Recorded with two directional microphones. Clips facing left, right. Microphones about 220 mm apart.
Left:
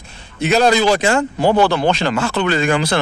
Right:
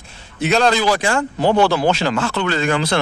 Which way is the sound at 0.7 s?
25° left (ahead or behind).